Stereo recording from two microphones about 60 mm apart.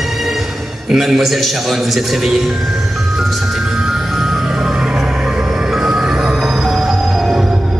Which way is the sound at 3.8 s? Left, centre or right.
Centre.